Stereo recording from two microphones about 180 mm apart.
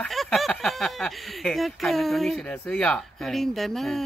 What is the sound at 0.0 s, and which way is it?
Speech, centre (ahead or behind).